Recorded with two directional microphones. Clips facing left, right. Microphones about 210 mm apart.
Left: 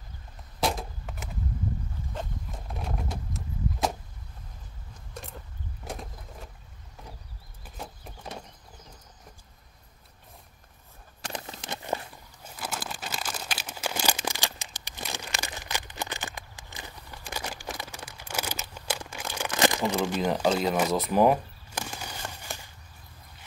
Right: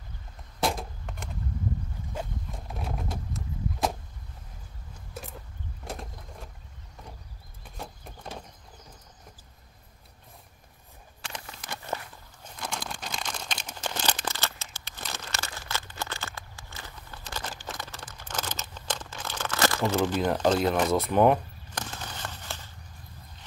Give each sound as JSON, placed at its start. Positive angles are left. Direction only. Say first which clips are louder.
{"t": 0.6, "sound": "a sound", "louder": "even", "side_deg": 0}
{"t": 2.1, "sound": "vehicle", "louder": "right 2 dB", "side_deg": 0}
{"t": 5.1, "sound": "vehicle", "louder": "right 1 dB", "side_deg": 0}
{"t": 7.6, "sound": "vehicle", "louder": "even", "side_deg": 5}
{"t": 11.4, "sound": "a sound", "louder": "left 3 dB", "side_deg": 25}
{"t": 12.4, "sound": "crumpling", "louder": "even", "side_deg": 5}
{"t": 20.2, "sound": "bird", "louder": "even", "side_deg": 5}